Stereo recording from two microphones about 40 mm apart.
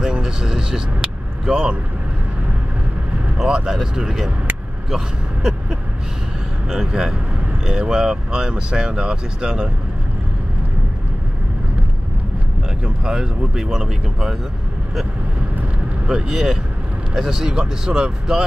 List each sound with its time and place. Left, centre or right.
0.0 s vehicle: centre
3.4 s speech: centre
12.8 s speech: right
16.1 s speech: right